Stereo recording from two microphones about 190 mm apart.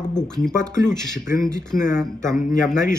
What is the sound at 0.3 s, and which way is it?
A man's voice, 5° left (ahead or behind).